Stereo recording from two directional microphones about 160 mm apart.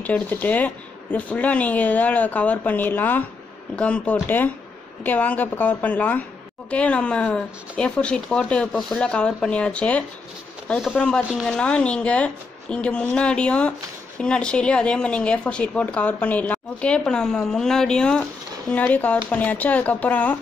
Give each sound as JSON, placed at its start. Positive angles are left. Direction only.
{"t": 0.0, "sound": "a woman's voice", "side_deg": 10}